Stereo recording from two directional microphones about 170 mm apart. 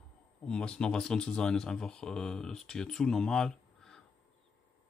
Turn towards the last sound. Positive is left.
turn(degrees=5)  # may be behind; listen again after turning